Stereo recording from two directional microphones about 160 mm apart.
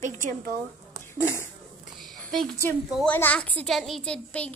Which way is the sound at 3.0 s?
10° left (ahead or behind).